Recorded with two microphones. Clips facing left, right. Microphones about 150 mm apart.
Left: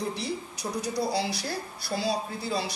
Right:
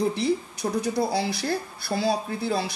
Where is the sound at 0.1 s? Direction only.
55° right (ahead or behind).